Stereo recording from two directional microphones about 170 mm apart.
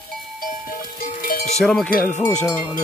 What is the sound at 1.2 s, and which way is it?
Cowbell, 60° left (ahead or behind).